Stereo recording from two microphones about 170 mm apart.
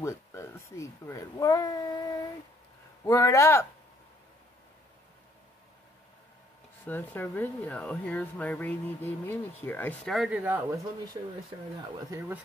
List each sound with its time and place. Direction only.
0.0 s a sound: 15° left (ahead or behind)
3.0 s speech: 15° left (ahead or behind)
6.9 s speech: 10° left (ahead or behind)
12.1 s speech: 15° right (ahead or behind)